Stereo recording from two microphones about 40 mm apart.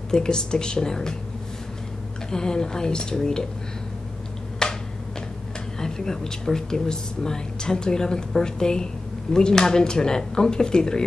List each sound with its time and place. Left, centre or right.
0.1 s speech: centre
2.3 s speech: centre
4.6 s a sound: centre
5.8 s speech: centre